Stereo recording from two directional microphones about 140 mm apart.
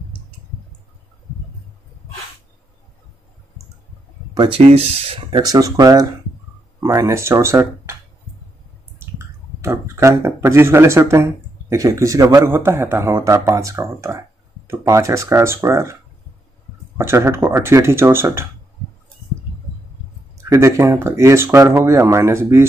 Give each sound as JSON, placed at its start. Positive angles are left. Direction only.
{"t": 4.5, "sound": "speech", "side_deg": -45}
{"t": 5.3, "sound": "a man's voice", "side_deg": -25}
{"t": 9.0, "sound": "clicking", "side_deg": -15}
{"t": 9.6, "sound": "a man's voice", "side_deg": -20}
{"t": 20.4, "sound": "a man's voice", "side_deg": -20}